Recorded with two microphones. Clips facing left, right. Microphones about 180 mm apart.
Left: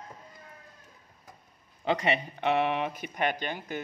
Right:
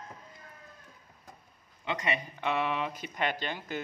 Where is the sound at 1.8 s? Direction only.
35° left (ahead or behind).